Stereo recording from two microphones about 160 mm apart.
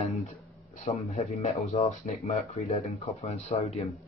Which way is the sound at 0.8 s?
40° left (ahead or behind).